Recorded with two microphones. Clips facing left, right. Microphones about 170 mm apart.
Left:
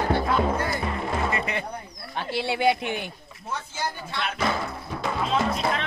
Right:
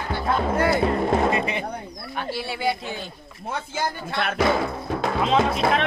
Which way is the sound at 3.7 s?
55° right (ahead or behind).